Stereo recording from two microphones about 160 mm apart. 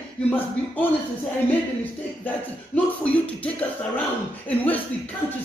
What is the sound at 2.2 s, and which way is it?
Speech, 10° left (ahead or behind).